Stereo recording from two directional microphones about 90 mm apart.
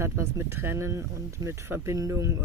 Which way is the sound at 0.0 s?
30° right (ahead or behind).